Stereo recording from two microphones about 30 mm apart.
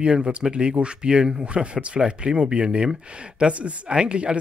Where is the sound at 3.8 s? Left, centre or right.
Right.